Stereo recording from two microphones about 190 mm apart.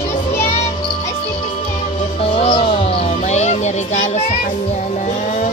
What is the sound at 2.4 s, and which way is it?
Music, 30° left (ahead or behind).